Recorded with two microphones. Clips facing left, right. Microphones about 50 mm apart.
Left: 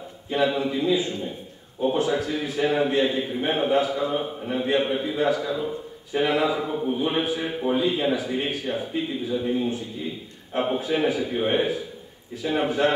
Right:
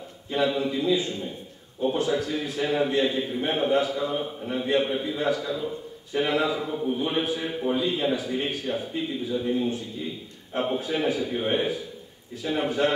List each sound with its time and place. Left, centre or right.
0.3 s a man's voice: centre
2.0 s a man's voice: left